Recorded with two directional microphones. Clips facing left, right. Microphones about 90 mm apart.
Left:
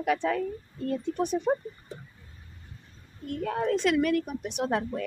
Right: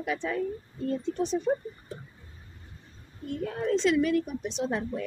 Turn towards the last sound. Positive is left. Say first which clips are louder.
# left 2 dB
turn(degrees=65)  # may be behind; listen again after turning